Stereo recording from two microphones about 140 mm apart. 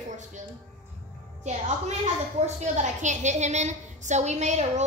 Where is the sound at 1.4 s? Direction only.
55° right (ahead or behind).